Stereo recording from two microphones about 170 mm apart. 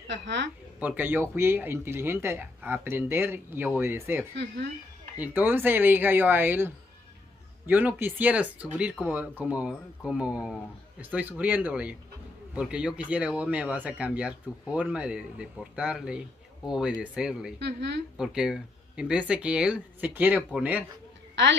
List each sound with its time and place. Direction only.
0.0 s speech: 90° right
0.7 s speech: 10° right (ahead or behind)
17.6 s speech: 90° right
18.1 s speech: 5° right (ahead or behind)
21.4 s speech: 90° right